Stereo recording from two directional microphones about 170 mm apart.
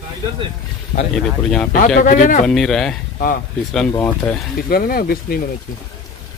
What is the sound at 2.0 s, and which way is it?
Speech, 55° left (ahead or behind).